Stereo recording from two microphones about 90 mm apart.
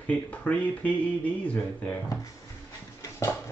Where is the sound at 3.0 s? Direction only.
35° left (ahead or behind).